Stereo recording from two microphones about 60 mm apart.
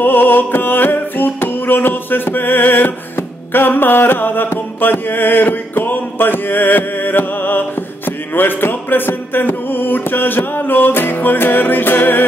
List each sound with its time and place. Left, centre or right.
0.0 s music: left